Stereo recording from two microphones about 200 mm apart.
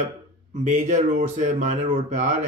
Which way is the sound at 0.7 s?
40° right (ahead or behind).